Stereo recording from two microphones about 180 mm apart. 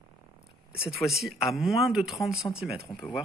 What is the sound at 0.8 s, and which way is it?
Speech, centre (ahead or behind).